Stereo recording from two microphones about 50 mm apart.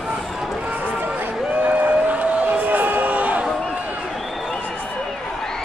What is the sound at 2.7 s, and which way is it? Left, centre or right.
Music, right.